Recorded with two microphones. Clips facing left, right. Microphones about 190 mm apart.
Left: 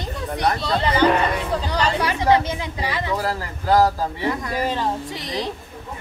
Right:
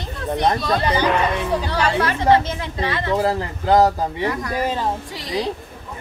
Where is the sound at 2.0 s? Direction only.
15° left (ahead or behind).